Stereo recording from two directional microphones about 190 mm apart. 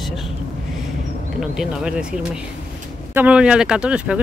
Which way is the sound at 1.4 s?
5° right (ahead or behind).